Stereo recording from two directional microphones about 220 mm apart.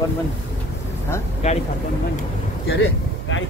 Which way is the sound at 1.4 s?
30° left (ahead or behind).